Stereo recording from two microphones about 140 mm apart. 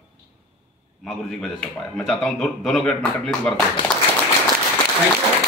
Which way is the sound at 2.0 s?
Centre (ahead or behind).